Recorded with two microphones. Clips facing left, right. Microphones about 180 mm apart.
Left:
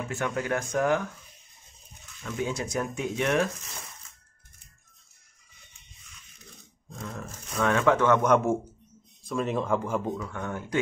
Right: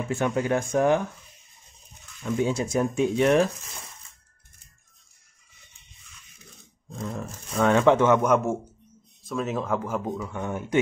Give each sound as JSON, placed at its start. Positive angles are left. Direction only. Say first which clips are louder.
{"t": 0.3, "sound": "speech", "louder": "right 4 dB", "side_deg": -25}
{"t": 2.2, "sound": "speech", "louder": "right 6 dB", "side_deg": -30}
{"t": 7.0, "sound": "speech", "louder": "right 5 dB", "side_deg": -30}
{"t": 8.2, "sound": "speech", "louder": "even", "side_deg": -5}
{"t": 10.2, "sound": "speech", "louder": "right 3 dB", "side_deg": -15}